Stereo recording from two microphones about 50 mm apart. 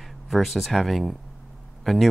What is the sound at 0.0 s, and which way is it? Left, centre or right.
Speech, centre.